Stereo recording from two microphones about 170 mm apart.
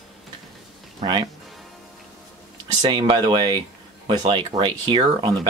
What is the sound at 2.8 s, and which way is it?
Speech, 25° right (ahead or behind).